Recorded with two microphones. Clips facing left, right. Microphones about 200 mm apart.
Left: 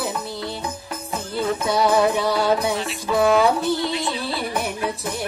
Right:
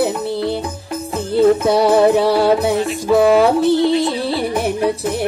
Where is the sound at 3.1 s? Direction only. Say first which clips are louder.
Right 6 dB; 45° right (ahead or behind).